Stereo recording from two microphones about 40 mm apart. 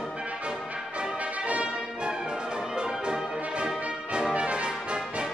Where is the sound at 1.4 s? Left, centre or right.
Right.